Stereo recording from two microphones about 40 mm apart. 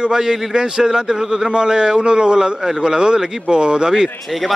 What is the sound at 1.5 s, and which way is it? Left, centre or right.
Speech, right.